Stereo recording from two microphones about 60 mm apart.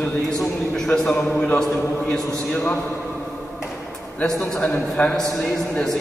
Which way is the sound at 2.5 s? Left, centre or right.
Left.